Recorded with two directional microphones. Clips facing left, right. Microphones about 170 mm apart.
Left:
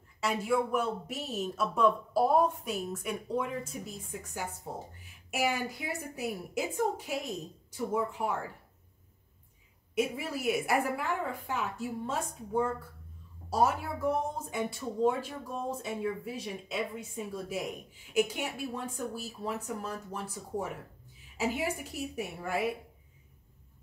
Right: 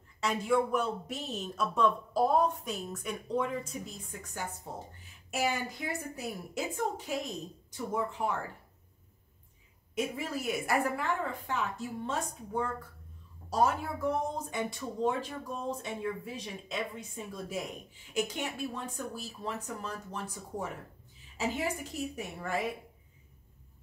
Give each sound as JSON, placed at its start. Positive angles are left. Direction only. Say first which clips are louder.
{"t": 0.2, "sound": "a woman's voice", "louder": "right 1 dB", "side_deg": 5}
{"t": 9.9, "sound": "a woman's voice", "louder": "left 2 dB", "side_deg": 10}